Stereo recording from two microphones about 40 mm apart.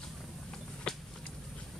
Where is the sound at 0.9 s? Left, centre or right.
Left.